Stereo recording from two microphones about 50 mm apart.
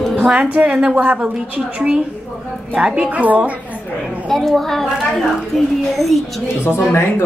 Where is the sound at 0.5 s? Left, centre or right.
Right.